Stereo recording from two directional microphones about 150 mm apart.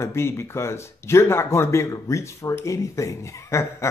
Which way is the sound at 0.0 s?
15° left (ahead or behind).